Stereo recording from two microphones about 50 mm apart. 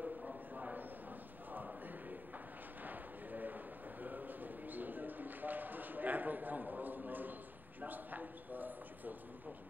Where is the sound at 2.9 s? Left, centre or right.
Right.